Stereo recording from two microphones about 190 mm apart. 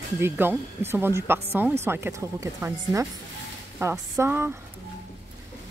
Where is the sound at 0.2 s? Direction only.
10° right (ahead or behind).